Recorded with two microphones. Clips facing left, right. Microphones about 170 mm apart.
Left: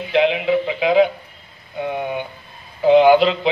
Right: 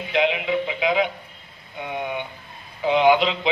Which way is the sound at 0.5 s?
45° left (ahead or behind).